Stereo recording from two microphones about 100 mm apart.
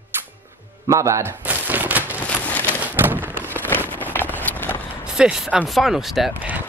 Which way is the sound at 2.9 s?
20° right (ahead or behind).